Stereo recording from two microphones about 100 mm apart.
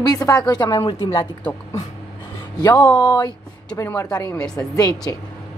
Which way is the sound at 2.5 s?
45° left (ahead or behind).